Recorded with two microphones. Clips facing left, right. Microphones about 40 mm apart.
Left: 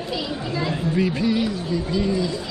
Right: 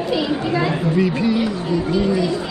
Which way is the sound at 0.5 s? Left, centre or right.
Right.